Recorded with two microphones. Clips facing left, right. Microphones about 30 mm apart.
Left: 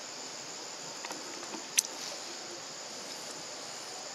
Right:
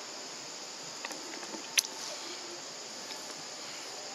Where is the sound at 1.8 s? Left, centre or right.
Right.